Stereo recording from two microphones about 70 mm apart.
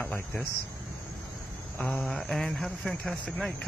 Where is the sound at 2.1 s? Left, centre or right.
Centre.